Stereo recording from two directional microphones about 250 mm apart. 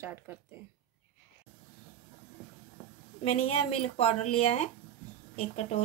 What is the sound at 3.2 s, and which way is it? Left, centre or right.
Speech, left.